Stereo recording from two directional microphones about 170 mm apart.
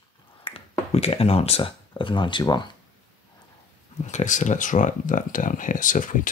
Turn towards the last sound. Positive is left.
turn(degrees=50)  # may be behind; listen again after turning